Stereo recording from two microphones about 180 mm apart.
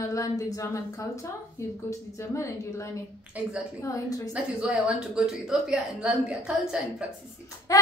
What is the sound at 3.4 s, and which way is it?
Speech, 10° right (ahead or behind).